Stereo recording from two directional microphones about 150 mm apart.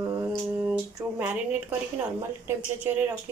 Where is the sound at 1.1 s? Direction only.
10° right (ahead or behind).